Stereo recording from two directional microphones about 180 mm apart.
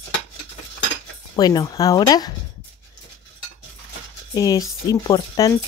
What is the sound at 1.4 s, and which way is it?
Speech, 20° left (ahead or behind).